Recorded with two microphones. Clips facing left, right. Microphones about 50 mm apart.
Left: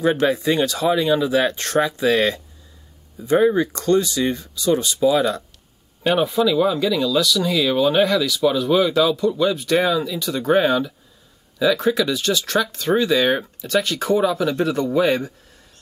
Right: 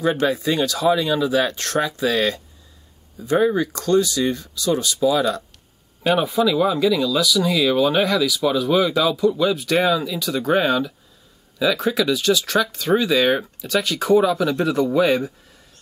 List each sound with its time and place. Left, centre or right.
0.3 s speech: centre
3.7 s speech: centre
6.0 s speech: centre